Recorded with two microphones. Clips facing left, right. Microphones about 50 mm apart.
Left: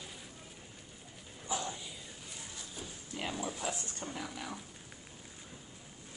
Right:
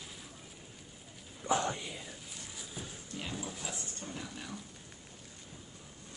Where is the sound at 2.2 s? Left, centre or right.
Centre.